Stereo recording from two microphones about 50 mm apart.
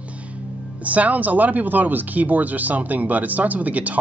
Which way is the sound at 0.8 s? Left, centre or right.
Right.